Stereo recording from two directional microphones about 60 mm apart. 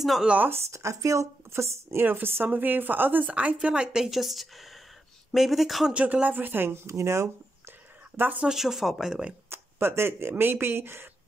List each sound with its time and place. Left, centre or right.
0.5 s speech: right
2.0 s speech: right
3.5 s speech: centre
5.9 s speech: right
6.9 s speech: right
8.2 s speech: right
8.5 s speech: centre
9.5 s speech: right